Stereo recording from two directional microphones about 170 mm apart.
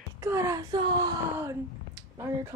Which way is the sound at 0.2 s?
15° right (ahead or behind).